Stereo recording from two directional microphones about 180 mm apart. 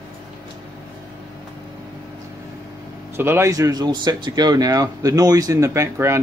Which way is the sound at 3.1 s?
15° right (ahead or behind).